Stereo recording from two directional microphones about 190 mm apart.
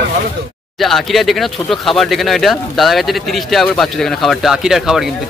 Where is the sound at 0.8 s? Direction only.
Centre (ahead or behind).